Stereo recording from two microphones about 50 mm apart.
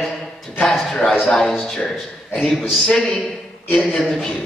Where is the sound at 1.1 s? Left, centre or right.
Centre.